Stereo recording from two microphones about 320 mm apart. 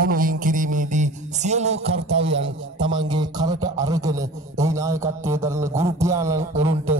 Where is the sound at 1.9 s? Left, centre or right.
Right.